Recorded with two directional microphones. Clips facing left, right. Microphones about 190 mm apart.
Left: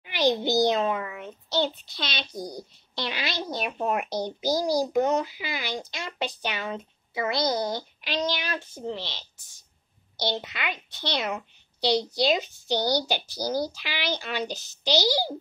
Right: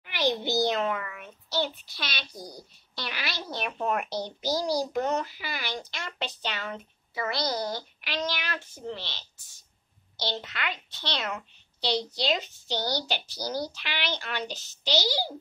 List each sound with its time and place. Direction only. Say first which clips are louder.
0.1 s a child's voice: left 4 dB; 15° left (ahead or behind)